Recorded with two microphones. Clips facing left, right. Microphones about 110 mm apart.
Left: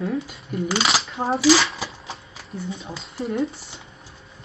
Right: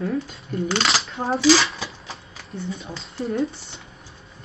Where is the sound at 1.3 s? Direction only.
Centre (ahead or behind).